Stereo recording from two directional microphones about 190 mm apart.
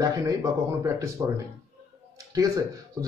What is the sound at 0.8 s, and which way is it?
Speech, 15° right (ahead or behind).